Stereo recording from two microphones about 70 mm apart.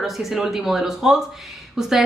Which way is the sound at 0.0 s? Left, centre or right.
Centre.